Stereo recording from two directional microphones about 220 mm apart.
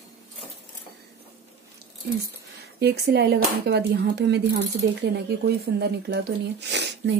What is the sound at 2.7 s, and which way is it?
Speech, 50° right (ahead or behind).